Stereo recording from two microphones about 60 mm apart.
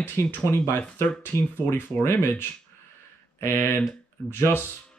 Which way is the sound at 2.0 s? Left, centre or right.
Left.